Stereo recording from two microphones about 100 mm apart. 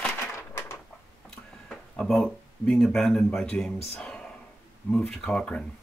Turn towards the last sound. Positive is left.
turn(degrees=5)  # may be behind; listen again after turning